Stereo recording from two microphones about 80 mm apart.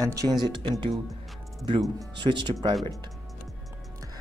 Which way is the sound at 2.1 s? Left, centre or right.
Right.